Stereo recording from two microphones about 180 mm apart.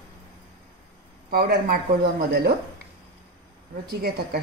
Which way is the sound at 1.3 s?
55° right (ahead or behind).